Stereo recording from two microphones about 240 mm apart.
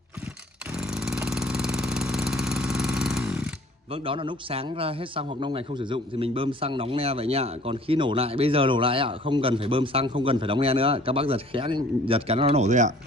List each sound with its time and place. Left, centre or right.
0.7 s engine: centre
3.9 s a man's voice: right